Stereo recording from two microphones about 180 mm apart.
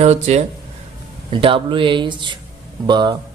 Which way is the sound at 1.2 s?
30° right (ahead or behind).